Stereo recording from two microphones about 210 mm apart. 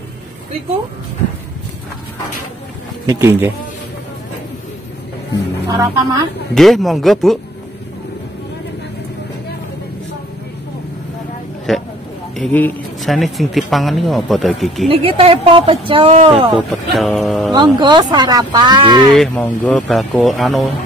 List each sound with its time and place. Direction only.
3.1 s a woman's voice: 10° right (ahead or behind)
5.7 s a woman's voice: 15° right (ahead or behind)
6.5 s speech: centre (ahead or behind)
11.7 s a sound: centre (ahead or behind)
12.4 s speech: 5° left (ahead or behind)
14.9 s speech: 25° right (ahead or behind)
16.5 s speech: centre (ahead or behind)
17.7 s speech: 20° right (ahead or behind)
19.1 s speech: 5° left (ahead or behind)